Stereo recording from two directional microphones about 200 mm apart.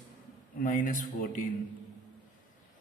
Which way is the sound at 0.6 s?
40° left (ahead or behind).